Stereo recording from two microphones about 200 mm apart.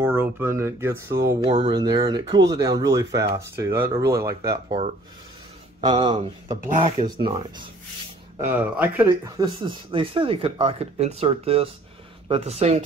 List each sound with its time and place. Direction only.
0.0 s speech: 10° right (ahead or behind)
5.8 s speech: 25° right (ahead or behind)
8.4 s speech: 10° right (ahead or behind); by 12.8 s 30° right (ahead or behind)